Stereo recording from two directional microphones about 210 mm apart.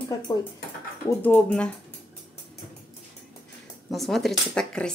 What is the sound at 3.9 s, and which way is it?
Speech, centre (ahead or behind).